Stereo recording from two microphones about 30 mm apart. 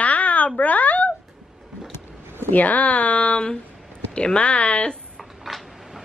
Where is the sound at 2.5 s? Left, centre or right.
Left.